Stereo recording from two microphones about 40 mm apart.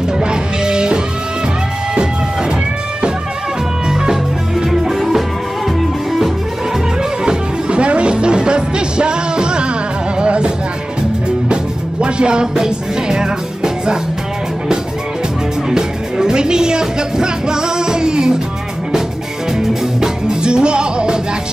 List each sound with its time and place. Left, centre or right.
0.2 s music: right
4.0 s music: centre
7.2 s music: right
15.7 s music: centre
20.0 s music: right